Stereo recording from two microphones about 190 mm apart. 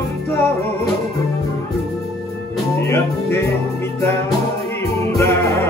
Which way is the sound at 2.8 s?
15° left (ahead or behind).